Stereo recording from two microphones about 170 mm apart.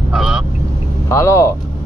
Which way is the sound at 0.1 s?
Centre (ahead or behind).